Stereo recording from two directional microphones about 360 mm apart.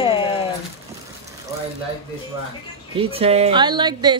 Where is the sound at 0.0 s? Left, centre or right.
Centre.